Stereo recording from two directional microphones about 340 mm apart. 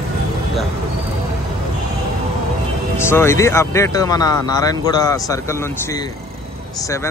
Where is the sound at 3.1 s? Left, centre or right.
Centre.